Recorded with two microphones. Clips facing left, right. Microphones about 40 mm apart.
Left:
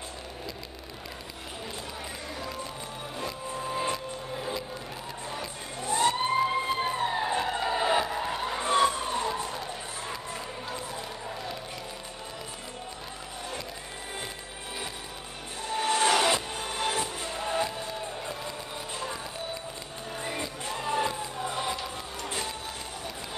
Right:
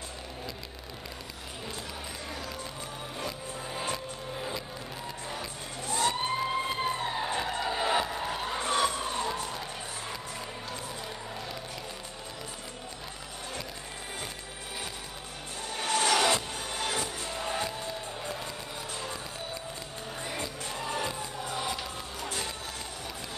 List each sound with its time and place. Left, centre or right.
3.3 s music: centre
6.0 s emergency vehicle: centre
7.3 s a sound: centre
8.5 s emergency vehicle: left
15.7 s a sound: centre
16.5 s music: centre
20.2 s music: centre